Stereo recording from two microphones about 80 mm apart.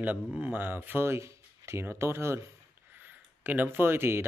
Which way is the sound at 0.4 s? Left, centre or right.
Right.